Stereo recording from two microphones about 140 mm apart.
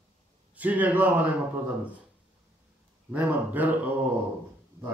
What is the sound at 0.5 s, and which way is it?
Speech, 10° right (ahead or behind).